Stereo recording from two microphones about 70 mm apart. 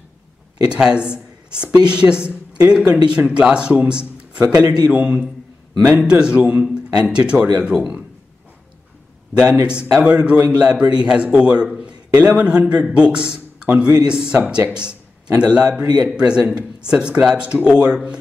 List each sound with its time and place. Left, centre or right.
0.7 s a woman's voice: centre
9.4 s a man's voice: centre